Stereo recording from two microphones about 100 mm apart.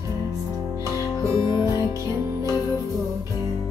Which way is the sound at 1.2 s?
30° right (ahead or behind).